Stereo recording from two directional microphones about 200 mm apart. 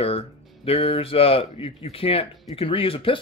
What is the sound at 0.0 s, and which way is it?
Speech, 30° left (ahead or behind).